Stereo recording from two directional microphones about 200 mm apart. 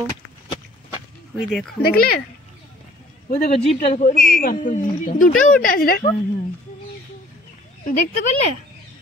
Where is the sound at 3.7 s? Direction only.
35° left (ahead or behind).